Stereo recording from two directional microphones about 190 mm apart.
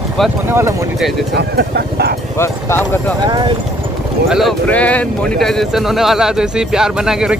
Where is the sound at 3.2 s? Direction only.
20° right (ahead or behind).